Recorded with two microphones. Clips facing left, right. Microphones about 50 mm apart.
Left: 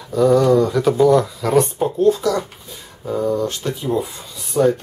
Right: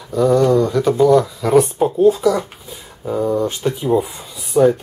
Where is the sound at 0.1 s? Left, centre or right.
Centre.